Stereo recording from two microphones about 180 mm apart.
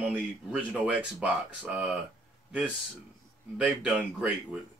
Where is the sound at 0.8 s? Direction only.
5° right (ahead or behind).